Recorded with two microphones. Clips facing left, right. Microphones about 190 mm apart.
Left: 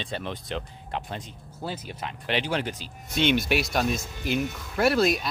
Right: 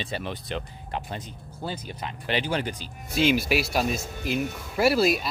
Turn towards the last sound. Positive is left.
turn(degrees=-5)  # may be behind; listen again after turning